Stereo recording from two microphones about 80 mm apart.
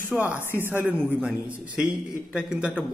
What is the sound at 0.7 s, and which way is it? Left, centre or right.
Speech, centre.